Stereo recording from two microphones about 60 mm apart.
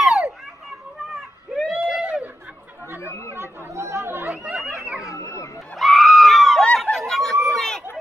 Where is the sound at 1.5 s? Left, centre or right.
Centre.